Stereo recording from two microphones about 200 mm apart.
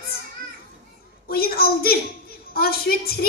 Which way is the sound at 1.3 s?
50° left (ahead or behind).